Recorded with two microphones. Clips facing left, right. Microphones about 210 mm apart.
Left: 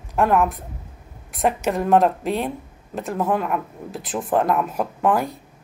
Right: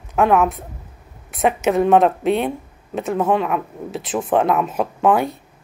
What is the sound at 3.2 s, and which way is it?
Speech, 75° right (ahead or behind).